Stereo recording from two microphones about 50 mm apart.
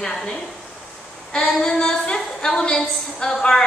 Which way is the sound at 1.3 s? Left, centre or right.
Centre.